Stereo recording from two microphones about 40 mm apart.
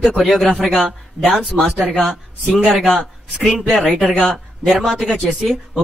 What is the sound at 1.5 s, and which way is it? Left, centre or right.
Speech, right.